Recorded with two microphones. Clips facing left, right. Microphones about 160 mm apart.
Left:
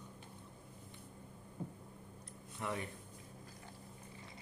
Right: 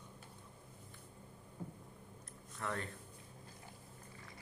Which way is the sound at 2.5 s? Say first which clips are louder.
Left 1 dB; 15° left (ahead or behind).